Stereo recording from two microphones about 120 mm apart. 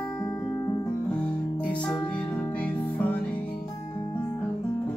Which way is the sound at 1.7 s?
10° left (ahead or behind).